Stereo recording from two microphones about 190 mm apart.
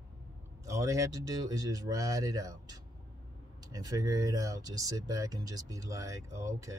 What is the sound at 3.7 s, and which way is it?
Speech, 20° right (ahead or behind).